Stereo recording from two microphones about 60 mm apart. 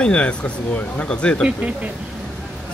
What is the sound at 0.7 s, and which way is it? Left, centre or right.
Speech, left.